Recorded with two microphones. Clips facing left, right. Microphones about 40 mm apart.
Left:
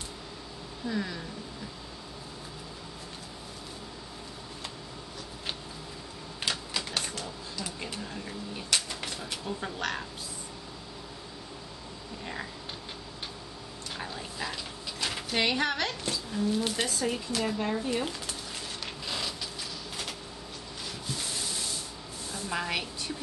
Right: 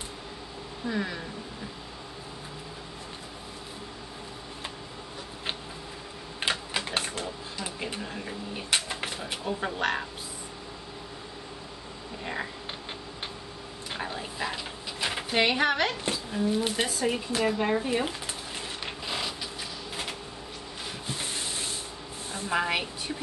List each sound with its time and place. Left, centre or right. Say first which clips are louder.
0.8 s a woman's voice: right 2 dB; centre
6.4 s typewriter: right 4 dB; right
13.9 s a sound: right 4 dB; right
17.6 s a woman's voice: right 4 dB; right
19.0 s printer: right 2 dB; centre
21.1 s sanding: right 1 dB; right
22.5 s a woman's voice: right 5 dB; centre